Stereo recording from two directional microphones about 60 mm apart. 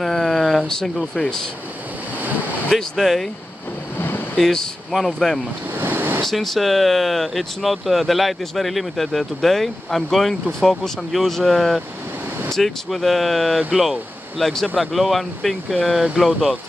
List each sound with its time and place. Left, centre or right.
0.0 s vehicle: centre
2.7 s speech: centre
4.4 s speech: centre
5.8 s a sound: right
6.2 s speech: centre
13.6 s speech: centre
14.4 s speech: centre